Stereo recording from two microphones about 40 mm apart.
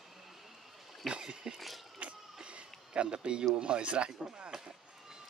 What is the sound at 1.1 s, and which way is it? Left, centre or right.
Speech, right.